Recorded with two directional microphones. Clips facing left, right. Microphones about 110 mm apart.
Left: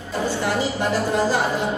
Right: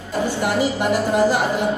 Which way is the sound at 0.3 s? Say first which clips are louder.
Right 3 dB; 15° right (ahead or behind).